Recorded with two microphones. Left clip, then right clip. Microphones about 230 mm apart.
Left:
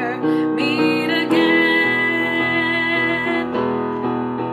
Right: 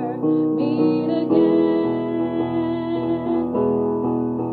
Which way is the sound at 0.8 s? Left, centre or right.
Left.